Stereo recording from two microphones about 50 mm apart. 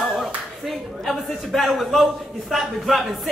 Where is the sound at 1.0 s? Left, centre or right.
Centre.